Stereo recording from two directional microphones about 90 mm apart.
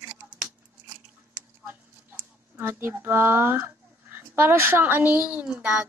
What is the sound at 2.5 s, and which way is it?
A child's voice, 25° right (ahead or behind).